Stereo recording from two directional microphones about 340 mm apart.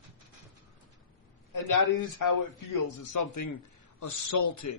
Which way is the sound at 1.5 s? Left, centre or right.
Left.